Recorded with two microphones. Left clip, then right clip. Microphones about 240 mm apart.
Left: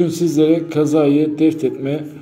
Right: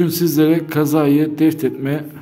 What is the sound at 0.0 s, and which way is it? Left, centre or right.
A man's voice, right.